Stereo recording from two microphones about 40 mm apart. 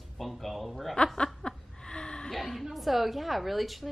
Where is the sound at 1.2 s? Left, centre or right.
Left.